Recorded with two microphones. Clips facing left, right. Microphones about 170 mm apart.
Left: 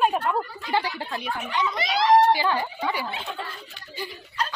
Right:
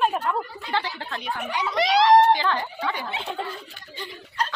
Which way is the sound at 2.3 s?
10° left (ahead or behind).